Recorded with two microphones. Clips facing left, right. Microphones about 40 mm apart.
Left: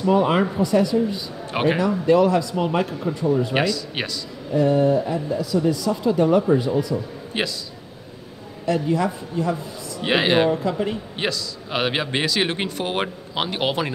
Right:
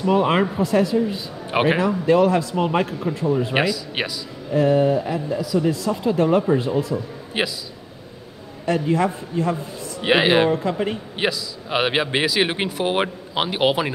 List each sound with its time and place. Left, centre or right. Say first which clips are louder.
0.0 s a man's voice: even; centre
4.6 s speech: right 1 dB; right
5.0 s a man's voice: even; right
5.9 s a man's voice: left 1 dB; centre
7.3 s a man's voice: right 2 dB; centre
8.6 s a man's voice: right 1 dB; right
10.0 s a man's voice: right 2 dB; centre
10.5 s a man's voice: right 1 dB; centre